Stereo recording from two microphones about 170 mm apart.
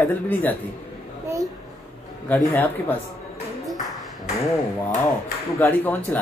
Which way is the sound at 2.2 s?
10° left (ahead or behind).